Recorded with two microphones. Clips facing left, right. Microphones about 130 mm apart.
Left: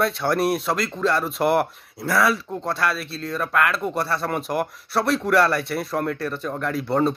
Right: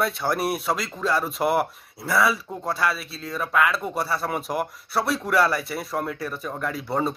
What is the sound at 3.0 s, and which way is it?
Speech, 65° left (ahead or behind).